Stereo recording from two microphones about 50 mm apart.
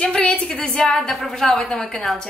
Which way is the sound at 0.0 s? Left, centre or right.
Centre.